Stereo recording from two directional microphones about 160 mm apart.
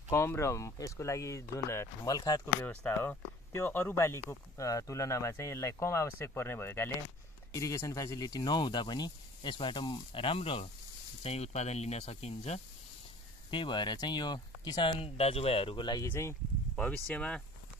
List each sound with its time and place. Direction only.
0.1 s speech: 15° left (ahead or behind)
2.6 s speech: 10° left (ahead or behind); by 12.6 s 40° left (ahead or behind)
13.5 s speech: 30° left (ahead or behind)
16.1 s speech: 15° left (ahead or behind)